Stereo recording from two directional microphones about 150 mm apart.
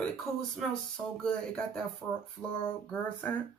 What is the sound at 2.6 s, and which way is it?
Speech, 10° left (ahead or behind).